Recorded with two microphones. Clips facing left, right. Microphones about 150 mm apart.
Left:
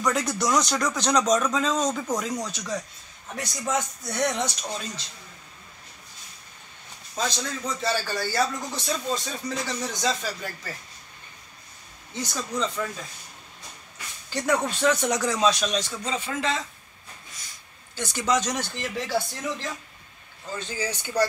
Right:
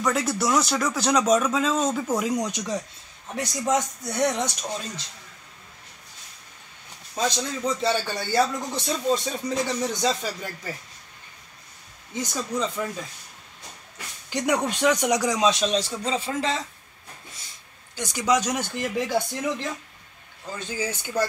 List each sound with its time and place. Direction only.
0.0 s speech: centre (ahead or behind)
7.2 s a man's voice: 15° right (ahead or behind)
12.2 s speech: 15° right (ahead or behind)
14.3 s a man's voice: 15° right (ahead or behind); by 16.6 s 30° right (ahead or behind)
17.9 s speech: 15° right (ahead or behind)